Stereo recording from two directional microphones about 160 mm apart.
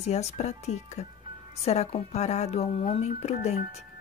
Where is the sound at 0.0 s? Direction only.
45° left (ahead or behind).